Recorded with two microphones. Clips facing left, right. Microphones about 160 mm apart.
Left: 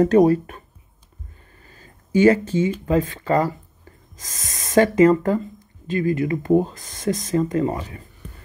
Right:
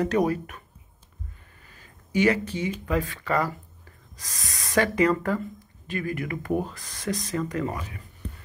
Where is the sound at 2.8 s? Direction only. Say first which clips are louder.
Left 6 dB; 25° left (ahead or behind).